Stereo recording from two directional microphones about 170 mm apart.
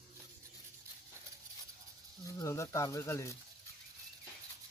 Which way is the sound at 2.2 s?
20° left (ahead or behind).